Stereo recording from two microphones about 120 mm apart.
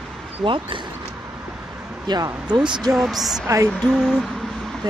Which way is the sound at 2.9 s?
5° right (ahead or behind).